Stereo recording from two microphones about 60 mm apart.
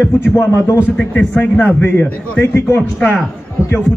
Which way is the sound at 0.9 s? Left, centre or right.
Left.